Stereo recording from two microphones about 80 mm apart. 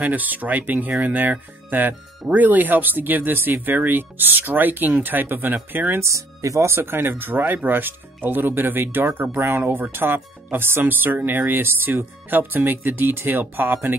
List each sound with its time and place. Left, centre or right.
0.0 s speech: right
6.0 s speech: right